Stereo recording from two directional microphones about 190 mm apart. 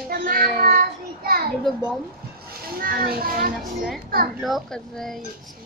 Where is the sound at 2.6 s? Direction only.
50° right (ahead or behind).